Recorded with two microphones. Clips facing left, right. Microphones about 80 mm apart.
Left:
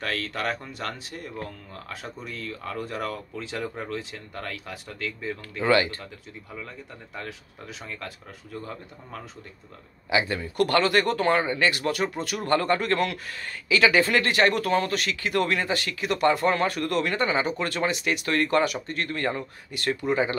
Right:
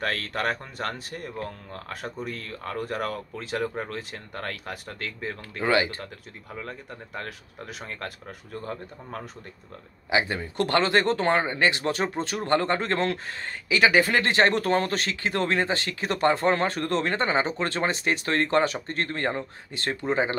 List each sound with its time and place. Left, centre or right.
0.0 s speech: right
5.6 s speech: centre
7.2 s speech: right
10.0 s speech: right